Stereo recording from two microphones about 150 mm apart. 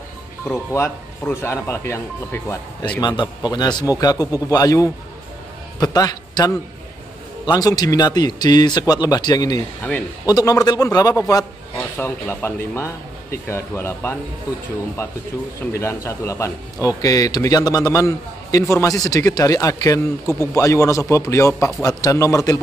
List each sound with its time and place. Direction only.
0.5 s speech: 15° left (ahead or behind)
3.0 s a man's voice: 30° left (ahead or behind)
15.7 s speech: 20° left (ahead or behind)